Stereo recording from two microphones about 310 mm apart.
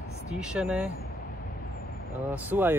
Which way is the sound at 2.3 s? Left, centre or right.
Centre.